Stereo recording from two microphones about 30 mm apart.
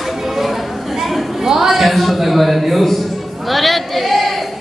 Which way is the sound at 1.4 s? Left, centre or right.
Centre.